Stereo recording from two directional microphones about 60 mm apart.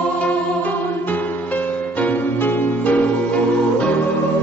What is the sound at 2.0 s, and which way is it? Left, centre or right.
Music, left.